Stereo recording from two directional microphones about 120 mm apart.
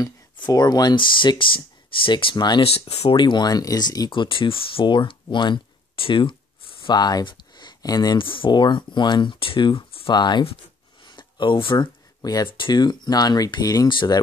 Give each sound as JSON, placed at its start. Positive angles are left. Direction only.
{"t": 0.0, "sound": "speech", "side_deg": 30}
{"t": 2.6, "sound": "speech", "side_deg": 55}
{"t": 3.2, "sound": "speech", "side_deg": 40}
{"t": 8.2, "sound": "speech", "side_deg": 45}
{"t": 11.1, "sound": "a sound", "side_deg": 40}
{"t": 12.4, "sound": "speech", "side_deg": 45}